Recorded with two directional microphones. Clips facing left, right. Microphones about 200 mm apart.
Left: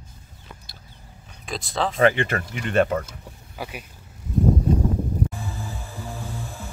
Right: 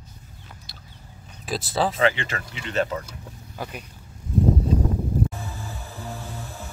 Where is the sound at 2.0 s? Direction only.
55° left (ahead or behind).